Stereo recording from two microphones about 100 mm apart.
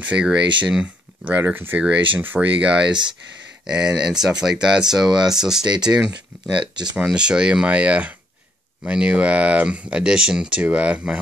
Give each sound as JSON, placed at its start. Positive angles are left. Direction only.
{"t": 0.0, "sound": "speech", "side_deg": -10}
{"t": 6.6, "sound": "speech", "side_deg": -50}
{"t": 7.1, "sound": "speech", "side_deg": -10}